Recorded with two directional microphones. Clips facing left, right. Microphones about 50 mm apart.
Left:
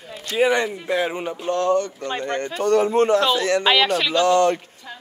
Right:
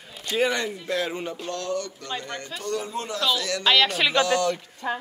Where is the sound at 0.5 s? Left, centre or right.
Left.